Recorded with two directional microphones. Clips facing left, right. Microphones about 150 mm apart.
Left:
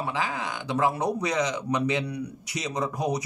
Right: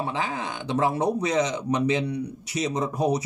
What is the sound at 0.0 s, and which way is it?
Speech, 25° right (ahead or behind).